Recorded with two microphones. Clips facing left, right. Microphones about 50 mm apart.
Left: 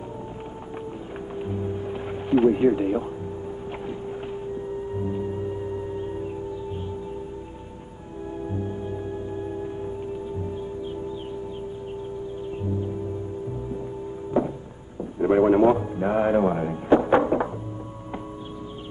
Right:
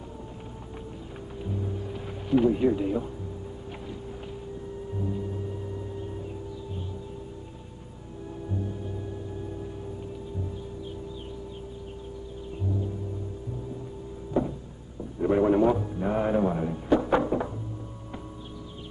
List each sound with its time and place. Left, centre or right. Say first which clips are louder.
1.4 s music: left 4 dB; left
4.9 s music: left 3 dB; left
8.5 s music: left 3 dB; left
14.3 s a sound: left 3 dB; left